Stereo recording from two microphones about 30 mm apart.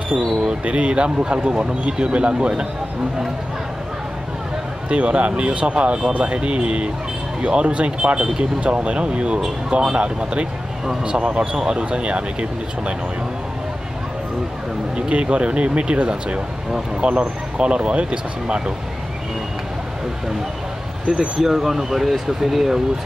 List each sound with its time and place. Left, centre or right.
0.7 s speech: right
4.8 s speech: right
15.0 s speech: right
21.1 s speech: centre